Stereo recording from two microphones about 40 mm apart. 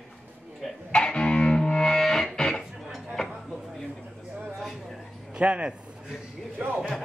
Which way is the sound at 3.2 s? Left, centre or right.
Centre.